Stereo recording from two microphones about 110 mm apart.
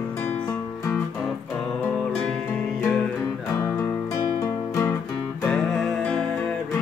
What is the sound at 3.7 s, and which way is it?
Music, 30° left (ahead or behind).